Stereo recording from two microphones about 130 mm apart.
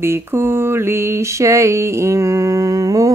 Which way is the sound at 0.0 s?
20° right (ahead or behind).